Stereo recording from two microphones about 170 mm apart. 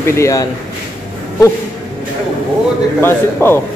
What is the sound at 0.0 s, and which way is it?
Speech, 15° left (ahead or behind).